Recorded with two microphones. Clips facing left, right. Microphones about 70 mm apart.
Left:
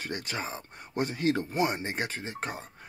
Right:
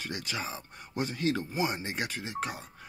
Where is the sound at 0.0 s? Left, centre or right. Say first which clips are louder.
Left 1 dB; left.